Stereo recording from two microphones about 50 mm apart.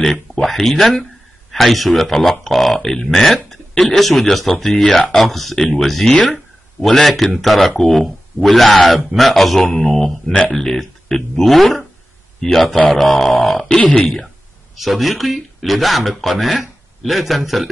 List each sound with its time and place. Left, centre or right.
0.0 s a man's voice: centre
13.7 s speech: left
14.0 s speech: centre